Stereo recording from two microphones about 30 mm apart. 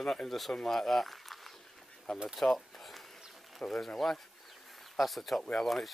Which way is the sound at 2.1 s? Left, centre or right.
Left.